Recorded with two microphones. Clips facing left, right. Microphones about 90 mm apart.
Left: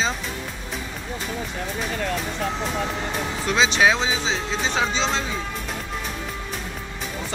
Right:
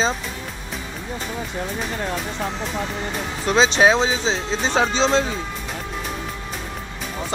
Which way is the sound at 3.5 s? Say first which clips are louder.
Right 4 dB; 35° right (ahead or behind).